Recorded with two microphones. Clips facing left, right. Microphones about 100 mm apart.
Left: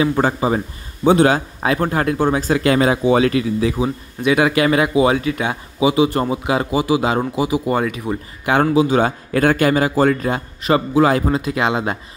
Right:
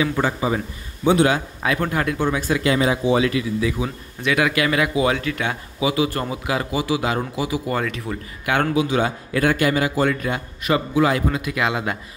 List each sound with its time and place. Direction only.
0.0 s a man's voice: 40° left (ahead or behind)
3.8 s speech: 20° left (ahead or behind)
8.7 s a man's voice: 35° left (ahead or behind)